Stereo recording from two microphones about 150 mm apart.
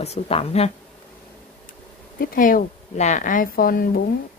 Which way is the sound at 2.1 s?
70° left (ahead or behind).